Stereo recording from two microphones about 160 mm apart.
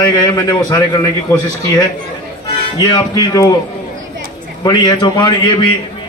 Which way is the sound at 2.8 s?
25° left (ahead or behind).